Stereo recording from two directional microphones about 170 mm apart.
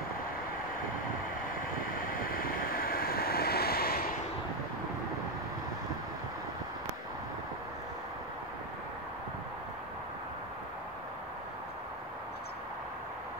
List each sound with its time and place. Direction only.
1.5 s waves: 55° left (ahead or behind)